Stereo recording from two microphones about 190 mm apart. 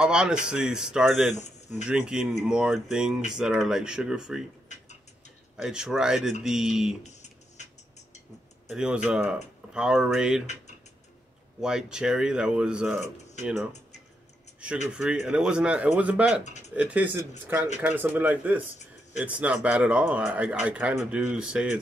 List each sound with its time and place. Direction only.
0.0 s speech: 5° right (ahead or behind)
1.3 s speech: 35° left (ahead or behind)
1.9 s speech: 5° right (ahead or behind)
5.6 s speech: 5° right (ahead or behind)
7.1 s music: 35° left (ahead or behind)
8.6 s speech: 5° right (ahead or behind)
10.4 s tick-tock: 35° left (ahead or behind)
11.6 s a man's voice: 5° right (ahead or behind)
15.0 s speech: 5° right (ahead or behind)
16.4 s a sound: 35° left (ahead or behind)
16.7 s a man's voice: 10° right (ahead or behind)